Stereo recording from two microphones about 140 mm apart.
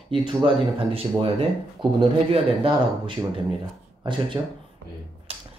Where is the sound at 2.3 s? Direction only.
40° right (ahead or behind).